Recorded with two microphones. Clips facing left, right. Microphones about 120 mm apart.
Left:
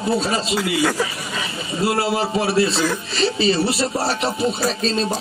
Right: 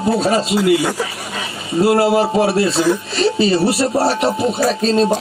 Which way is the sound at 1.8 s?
50° right (ahead or behind).